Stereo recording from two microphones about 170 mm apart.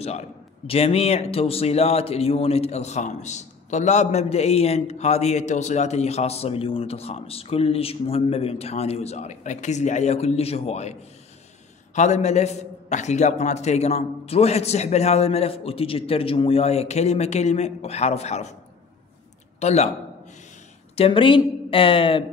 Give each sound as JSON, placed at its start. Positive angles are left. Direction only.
{"t": 0.0, "sound": "a man's voice", "side_deg": 40}
{"t": 19.6, "sound": "a man's voice", "side_deg": 40}
{"t": 20.9, "sound": "a man's voice", "side_deg": 35}